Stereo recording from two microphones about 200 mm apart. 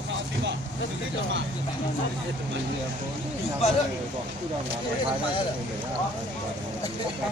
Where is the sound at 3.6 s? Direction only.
35° left (ahead or behind).